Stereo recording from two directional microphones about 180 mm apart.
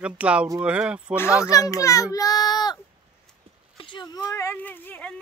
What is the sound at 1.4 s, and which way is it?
A child's voice, 20° left (ahead or behind).